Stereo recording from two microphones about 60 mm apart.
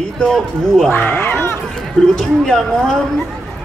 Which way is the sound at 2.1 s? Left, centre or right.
Centre.